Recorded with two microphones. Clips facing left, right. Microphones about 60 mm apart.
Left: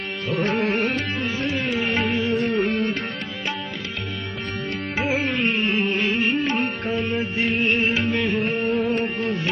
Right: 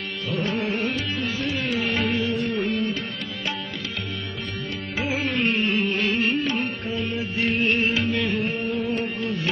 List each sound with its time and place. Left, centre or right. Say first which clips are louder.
0.3 s music: left 4 dB; left
1.2 s music: left 2 dB; left
2.2 s music: left 3 dB; left
5.7 s music: left 1 dB; left
6.0 s music: left 1 dB; centre
6.4 s music: left 2 dB; left
6.9 s music: left 3 dB; left
7.4 s music: even; centre
7.9 s music: left 2 dB; left
8.4 s music: left 4 dB; left